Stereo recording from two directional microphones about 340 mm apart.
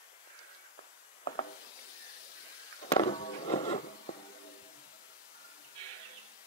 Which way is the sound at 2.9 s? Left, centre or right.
Centre.